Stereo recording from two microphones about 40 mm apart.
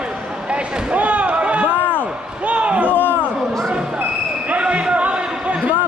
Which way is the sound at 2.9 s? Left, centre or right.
Left.